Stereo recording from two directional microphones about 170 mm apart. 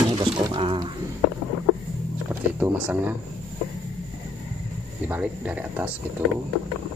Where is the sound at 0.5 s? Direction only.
30° right (ahead or behind).